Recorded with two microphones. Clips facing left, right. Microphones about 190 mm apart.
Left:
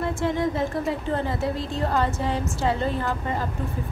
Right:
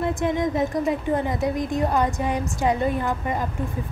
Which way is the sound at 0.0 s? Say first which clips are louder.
Right 1 dB; 20° right (ahead or behind).